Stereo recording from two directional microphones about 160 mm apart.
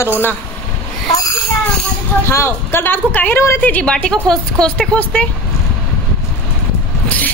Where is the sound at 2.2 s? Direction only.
15° left (ahead or behind).